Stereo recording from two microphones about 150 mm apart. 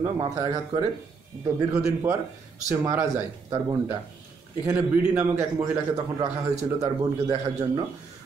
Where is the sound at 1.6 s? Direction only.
20° right (ahead or behind).